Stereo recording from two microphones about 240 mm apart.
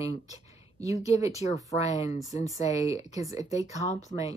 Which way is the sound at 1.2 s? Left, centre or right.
Left.